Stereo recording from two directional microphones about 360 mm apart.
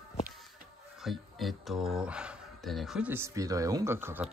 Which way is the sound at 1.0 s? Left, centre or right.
Centre.